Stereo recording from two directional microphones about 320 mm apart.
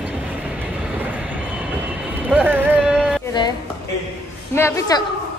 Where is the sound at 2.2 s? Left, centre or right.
Centre.